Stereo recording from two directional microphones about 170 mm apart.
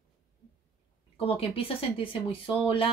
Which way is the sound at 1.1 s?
35° left (ahead or behind).